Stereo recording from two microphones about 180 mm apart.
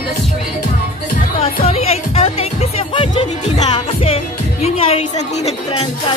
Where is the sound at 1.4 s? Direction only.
35° left (ahead or behind).